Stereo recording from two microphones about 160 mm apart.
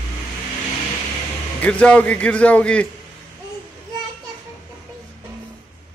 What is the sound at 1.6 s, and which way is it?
Speech, 10° left (ahead or behind).